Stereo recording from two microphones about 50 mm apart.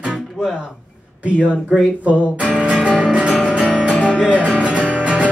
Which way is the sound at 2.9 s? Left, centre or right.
Centre.